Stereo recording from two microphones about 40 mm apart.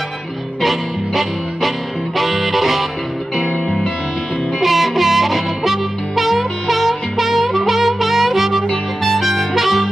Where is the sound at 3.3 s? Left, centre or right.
Left.